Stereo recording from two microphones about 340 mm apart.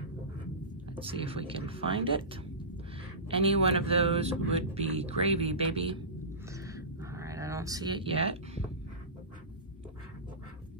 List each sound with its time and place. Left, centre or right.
0.9 s a man's voice: centre
3.3 s a man's voice: centre
6.5 s a sound: centre